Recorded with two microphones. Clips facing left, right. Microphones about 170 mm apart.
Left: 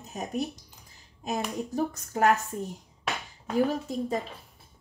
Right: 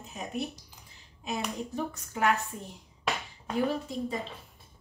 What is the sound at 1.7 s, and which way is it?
Speech, 40° left (ahead or behind).